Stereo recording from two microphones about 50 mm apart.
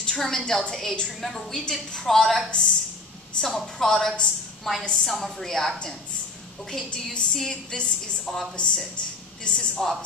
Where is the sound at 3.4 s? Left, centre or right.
Centre.